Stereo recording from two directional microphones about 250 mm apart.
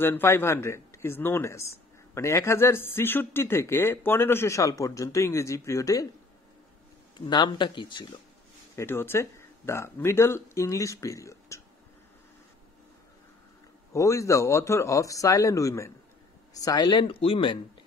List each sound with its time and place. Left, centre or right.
0.0 s speech: centre
7.2 s speech: centre
13.9 s speech: centre